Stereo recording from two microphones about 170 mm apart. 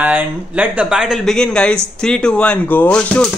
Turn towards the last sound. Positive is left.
turn(degrees=5)  # may be behind; listen again after turning